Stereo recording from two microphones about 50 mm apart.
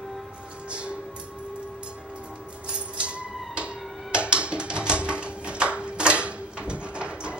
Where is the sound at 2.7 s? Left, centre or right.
Right.